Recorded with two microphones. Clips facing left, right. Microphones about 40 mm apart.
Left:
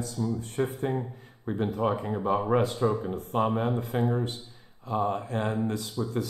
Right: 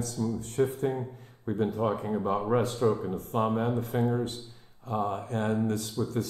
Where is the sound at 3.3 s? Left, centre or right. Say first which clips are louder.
Left 1 dB; left.